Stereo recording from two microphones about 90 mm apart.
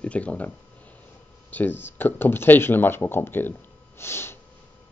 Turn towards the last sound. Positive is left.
turn(degrees=25)  # may be behind; listen again after turning